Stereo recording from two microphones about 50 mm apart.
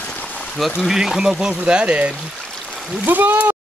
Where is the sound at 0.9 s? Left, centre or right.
Centre; by 2.1 s right.